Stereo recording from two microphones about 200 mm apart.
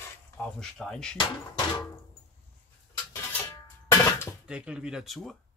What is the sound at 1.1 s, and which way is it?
Speech, 20° left (ahead or behind).